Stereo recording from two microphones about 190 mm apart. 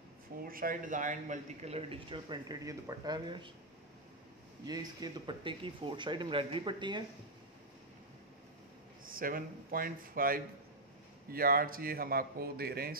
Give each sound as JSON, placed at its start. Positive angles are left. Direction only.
{"t": 0.4, "sound": "a man's voice", "side_deg": -50}
{"t": 4.6, "sound": "a man's voice", "side_deg": -20}
{"t": 9.0, "sound": "a man's voice", "side_deg": -50}